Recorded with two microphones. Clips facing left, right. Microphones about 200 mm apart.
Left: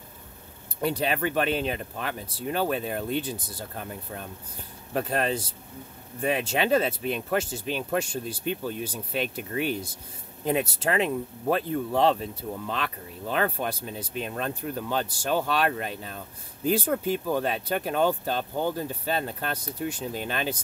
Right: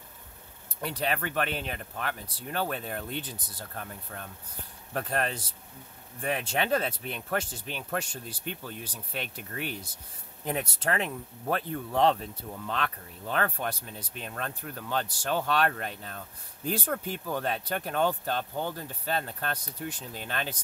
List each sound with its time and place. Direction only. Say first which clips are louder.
0.7 s speech: left 5 dB; 15° left (ahead or behind)